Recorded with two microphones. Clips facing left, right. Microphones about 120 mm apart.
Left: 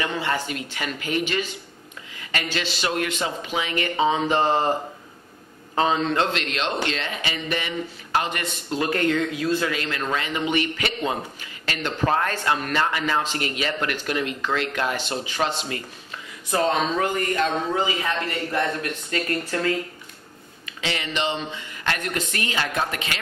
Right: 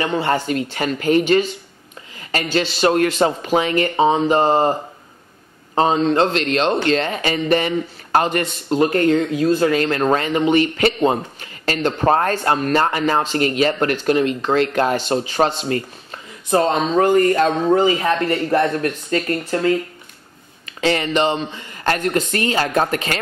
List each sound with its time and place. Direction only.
0.0 s speech: 40° right (ahead or behind)
5.8 s speech: 35° right (ahead or behind)
20.8 s speech: 45° right (ahead or behind)